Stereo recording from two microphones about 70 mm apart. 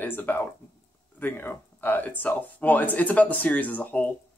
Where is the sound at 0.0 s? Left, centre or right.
Left.